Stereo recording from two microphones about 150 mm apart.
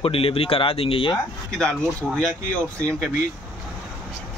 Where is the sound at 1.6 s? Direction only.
10° left (ahead or behind).